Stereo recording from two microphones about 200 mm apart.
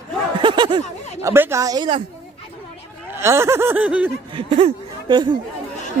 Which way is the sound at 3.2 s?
15° right (ahead or behind).